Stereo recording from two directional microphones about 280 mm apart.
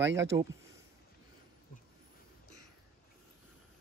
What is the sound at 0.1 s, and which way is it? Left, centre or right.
Speech, centre.